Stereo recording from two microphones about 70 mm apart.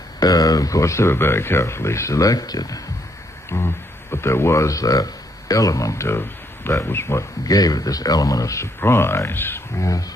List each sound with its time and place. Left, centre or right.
0.2 s speech: left
3.4 s speech: left
7.4 s speech: left
8.8 s speech: left
9.8 s speech: left